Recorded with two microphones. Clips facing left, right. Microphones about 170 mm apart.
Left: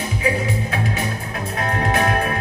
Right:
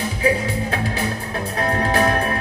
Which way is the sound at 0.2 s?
30° right (ahead or behind).